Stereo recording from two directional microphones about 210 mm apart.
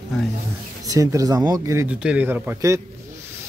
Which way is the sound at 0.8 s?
15° right (ahead or behind).